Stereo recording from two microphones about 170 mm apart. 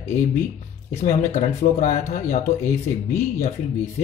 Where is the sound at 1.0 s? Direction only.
45° left (ahead or behind).